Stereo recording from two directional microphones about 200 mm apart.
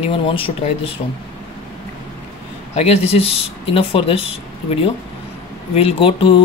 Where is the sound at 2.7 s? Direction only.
30° left (ahead or behind).